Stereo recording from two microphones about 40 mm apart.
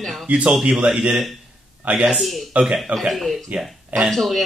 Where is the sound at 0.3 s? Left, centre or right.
Right.